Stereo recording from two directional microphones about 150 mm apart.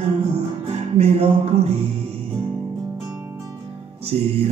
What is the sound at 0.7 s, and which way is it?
Music, 45° right (ahead or behind).